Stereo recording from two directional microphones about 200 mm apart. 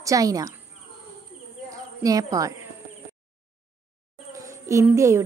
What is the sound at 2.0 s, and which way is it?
Speech, 15° right (ahead or behind).